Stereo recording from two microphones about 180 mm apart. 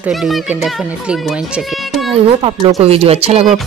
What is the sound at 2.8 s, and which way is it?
Speech, 35° right (ahead or behind).